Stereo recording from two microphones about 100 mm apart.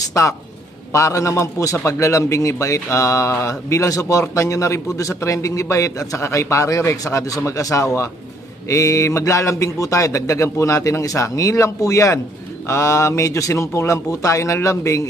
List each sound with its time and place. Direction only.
0.1 s a man's voice: 30° left (ahead or behind)